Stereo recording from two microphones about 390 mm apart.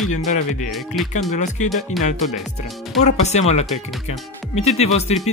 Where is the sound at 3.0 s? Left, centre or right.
Centre.